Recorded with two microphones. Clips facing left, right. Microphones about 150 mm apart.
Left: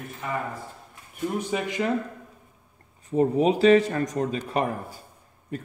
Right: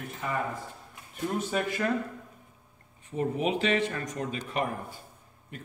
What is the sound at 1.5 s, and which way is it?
Speech, 20° left (ahead or behind).